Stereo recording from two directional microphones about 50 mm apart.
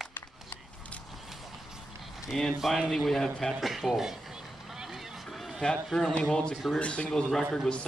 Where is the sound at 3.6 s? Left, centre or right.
Centre.